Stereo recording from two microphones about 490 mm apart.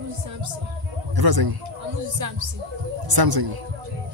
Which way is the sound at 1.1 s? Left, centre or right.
Right.